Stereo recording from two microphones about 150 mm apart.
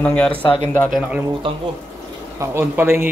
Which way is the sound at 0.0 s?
10° left (ahead or behind).